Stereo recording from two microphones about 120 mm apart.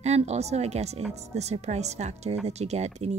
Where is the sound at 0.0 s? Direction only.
65° right (ahead or behind).